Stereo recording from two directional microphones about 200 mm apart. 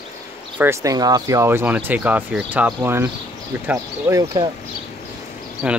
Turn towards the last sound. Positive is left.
turn(degrees=-5)  # may be behind; listen again after turning